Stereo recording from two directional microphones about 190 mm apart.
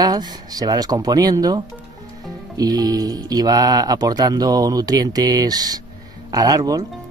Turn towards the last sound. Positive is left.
turn(degrees=-20)  # may be behind; listen again after turning